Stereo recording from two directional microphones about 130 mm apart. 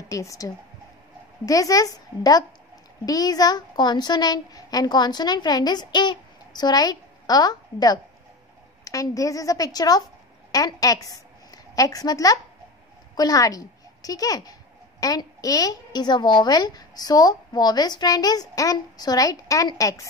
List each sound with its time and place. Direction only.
0.1 s a woman's voice: 25° left (ahead or behind)